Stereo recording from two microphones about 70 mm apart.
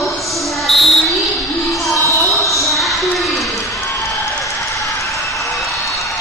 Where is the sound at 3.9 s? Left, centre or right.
Left.